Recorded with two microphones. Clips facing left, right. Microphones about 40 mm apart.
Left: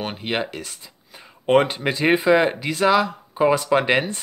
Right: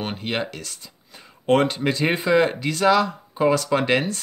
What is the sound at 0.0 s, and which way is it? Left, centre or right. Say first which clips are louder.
Speech: left 1 dB; centre.